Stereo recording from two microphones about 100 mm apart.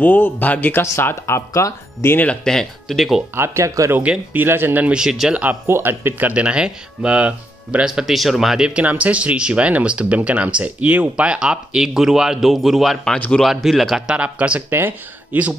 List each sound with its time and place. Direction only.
0.0 s speech: 15° left (ahead or behind)
2.1 s speech: 10° left (ahead or behind)
3.3 s speech: 25° right (ahead or behind)
3.9 s speech: 15° right (ahead or behind)
5.4 s speech: 20° right (ahead or behind); by 14.1 s centre (ahead or behind)
14.1 s speech: 10° right (ahead or behind)